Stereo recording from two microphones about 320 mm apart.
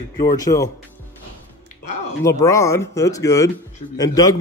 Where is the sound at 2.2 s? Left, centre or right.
Centre.